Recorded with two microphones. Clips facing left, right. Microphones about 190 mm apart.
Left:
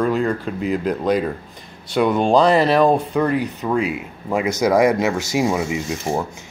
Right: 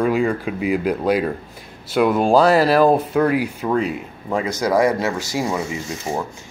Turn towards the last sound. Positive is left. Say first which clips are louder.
# left 3 dB
turn(degrees=15)  # may be behind; listen again after turning